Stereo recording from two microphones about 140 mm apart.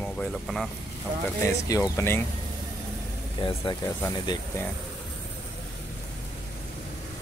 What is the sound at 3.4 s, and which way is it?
Speech, 35° left (ahead or behind).